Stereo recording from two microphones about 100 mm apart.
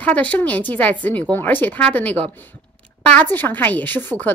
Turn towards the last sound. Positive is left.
turn(degrees=20)  # may be behind; listen again after turning